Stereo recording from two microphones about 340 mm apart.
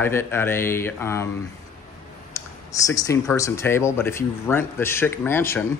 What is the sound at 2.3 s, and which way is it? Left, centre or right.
Speech, centre.